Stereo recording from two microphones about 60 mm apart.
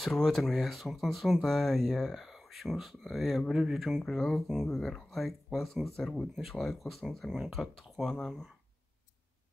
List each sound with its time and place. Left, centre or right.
0.0 s speech: centre